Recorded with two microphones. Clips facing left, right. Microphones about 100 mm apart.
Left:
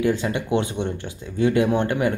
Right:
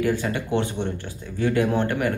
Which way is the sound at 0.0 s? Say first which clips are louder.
Left 2 dB; 20° left (ahead or behind).